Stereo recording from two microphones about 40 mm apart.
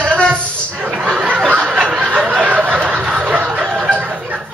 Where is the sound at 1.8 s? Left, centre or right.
Right.